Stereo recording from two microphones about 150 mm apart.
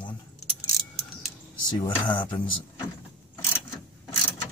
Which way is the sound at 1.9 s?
35° left (ahead or behind).